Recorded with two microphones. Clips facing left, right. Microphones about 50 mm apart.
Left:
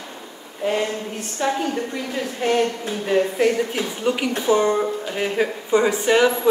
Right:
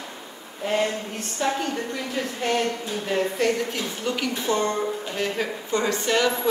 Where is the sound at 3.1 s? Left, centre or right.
Centre.